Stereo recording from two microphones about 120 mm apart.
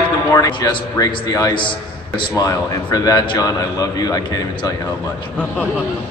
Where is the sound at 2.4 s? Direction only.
30° left (ahead or behind).